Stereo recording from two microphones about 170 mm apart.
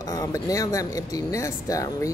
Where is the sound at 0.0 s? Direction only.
20° left (ahead or behind).